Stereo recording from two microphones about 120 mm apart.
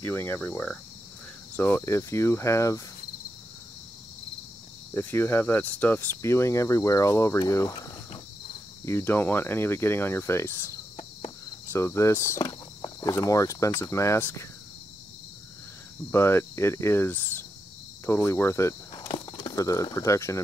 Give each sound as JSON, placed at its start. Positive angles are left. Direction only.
{"t": 0.0, "sound": "speech", "side_deg": 20}
{"t": 4.9, "sound": "speech", "side_deg": 20}
{"t": 11.7, "sound": "speech", "side_deg": 20}
{"t": 16.1, "sound": "speech", "side_deg": 20}
{"t": 19.1, "sound": "speech", "side_deg": 35}